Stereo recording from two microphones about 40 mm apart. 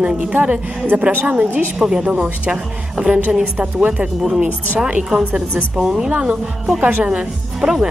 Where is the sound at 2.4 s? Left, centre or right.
Right; by 6.1 s centre.